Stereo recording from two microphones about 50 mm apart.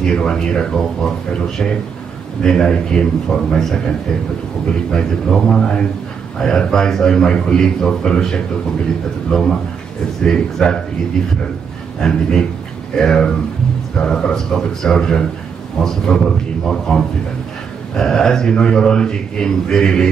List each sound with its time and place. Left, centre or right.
0.0 s a man's voice: centre
4.9 s a man's voice: centre
12.0 s a man's voice: centre